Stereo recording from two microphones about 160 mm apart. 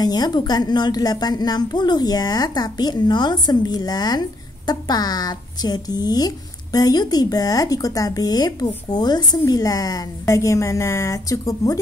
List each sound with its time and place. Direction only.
0.0 s a woman's voice: 25° left (ahead or behind)